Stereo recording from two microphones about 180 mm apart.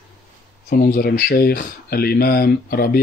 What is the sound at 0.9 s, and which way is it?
Speech, 55° left (ahead or behind).